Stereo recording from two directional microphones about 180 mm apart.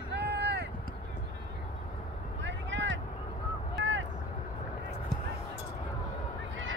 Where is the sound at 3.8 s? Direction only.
90° right.